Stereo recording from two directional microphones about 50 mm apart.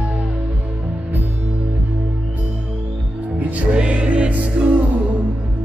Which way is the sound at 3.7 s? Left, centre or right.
Right.